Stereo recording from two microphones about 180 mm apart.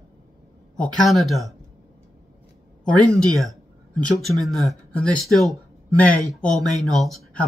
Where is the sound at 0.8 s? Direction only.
Centre (ahead or behind).